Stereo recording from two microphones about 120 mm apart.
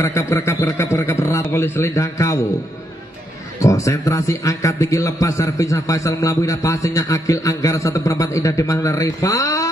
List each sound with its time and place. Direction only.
0.0 s a man's voice: 25° left (ahead or behind)
3.5 s a man's voice: 25° left (ahead or behind)